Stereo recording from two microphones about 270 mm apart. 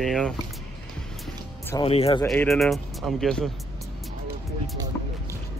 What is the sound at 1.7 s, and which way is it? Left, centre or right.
Speech, centre.